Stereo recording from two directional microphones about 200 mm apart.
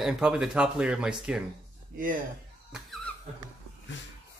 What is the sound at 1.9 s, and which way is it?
Speech, 45° right (ahead or behind).